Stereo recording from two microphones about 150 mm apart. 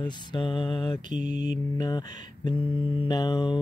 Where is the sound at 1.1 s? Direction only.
60° right (ahead or behind).